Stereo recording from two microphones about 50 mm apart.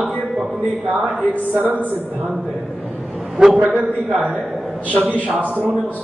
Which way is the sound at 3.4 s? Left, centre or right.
Centre.